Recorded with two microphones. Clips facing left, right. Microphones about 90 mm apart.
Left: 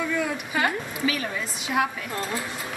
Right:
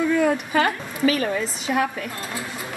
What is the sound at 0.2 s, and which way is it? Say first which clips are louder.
A woman's voice: right 6 dB; 45° right (ahead or behind).